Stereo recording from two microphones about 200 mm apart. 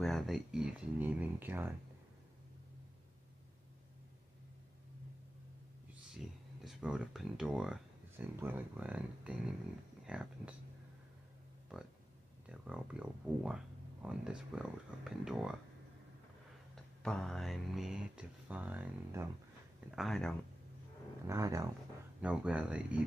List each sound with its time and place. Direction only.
0.0 s speech: centre (ahead or behind)
6.0 s speech: centre (ahead or behind)
12.4 s speech: 5° right (ahead or behind)
16.7 s speech: 5° left (ahead or behind)
20.0 s speech: centre (ahead or behind)
21.3 s speech: 15° right (ahead or behind)
22.2 s speech: 5° right (ahead or behind)